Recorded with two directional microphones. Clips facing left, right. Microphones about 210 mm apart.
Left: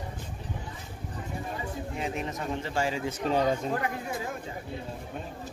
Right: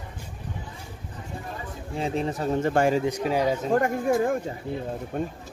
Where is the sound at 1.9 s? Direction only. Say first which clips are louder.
Right 9 dB; 30° right (ahead or behind).